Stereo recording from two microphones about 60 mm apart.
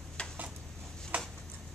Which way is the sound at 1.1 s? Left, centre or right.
Right.